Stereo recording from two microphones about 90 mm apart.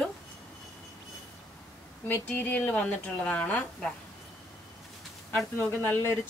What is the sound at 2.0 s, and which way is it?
A woman's voice, 20° left (ahead or behind).